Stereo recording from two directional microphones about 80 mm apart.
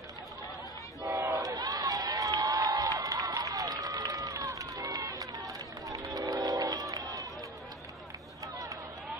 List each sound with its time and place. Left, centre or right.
1.0 s a sound: right
1.4 s crowd: right
5.9 s run: right